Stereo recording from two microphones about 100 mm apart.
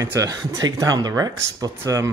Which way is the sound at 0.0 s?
35° right (ahead or behind).